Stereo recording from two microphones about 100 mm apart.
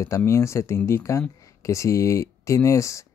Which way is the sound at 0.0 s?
30° left (ahead or behind).